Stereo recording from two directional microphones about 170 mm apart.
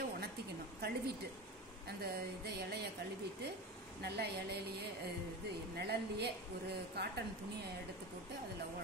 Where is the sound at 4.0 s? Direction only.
70° right (ahead or behind).